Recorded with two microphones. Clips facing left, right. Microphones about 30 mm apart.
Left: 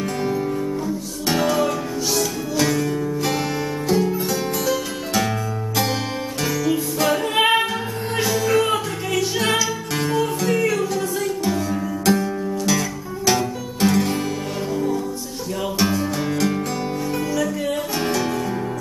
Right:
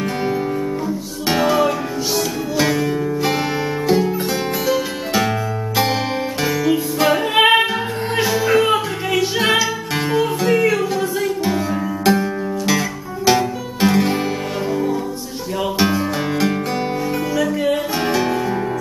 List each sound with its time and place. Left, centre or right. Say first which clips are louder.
0.8 s music: right 2 dB; centre
6.4 s music: right 3 dB; centre